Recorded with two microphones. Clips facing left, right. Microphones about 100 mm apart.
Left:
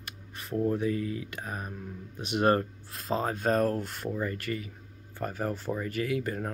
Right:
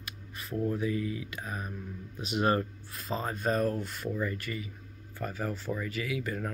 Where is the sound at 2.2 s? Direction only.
55° left (ahead or behind).